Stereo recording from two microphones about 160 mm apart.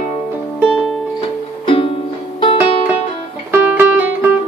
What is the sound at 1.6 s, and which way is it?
Music, 35° left (ahead or behind).